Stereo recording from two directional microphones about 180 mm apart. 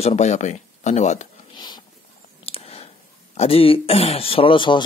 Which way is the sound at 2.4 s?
35° left (ahead or behind).